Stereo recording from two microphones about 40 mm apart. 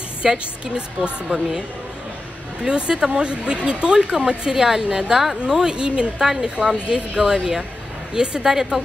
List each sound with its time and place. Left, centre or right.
0.2 s a woman's voice: right
2.6 s a woman's voice: right